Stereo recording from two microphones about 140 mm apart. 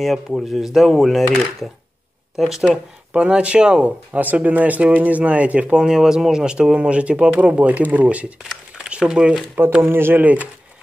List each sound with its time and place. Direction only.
0.0 s speech: centre (ahead or behind)
9.6 s speech: 15° right (ahead or behind)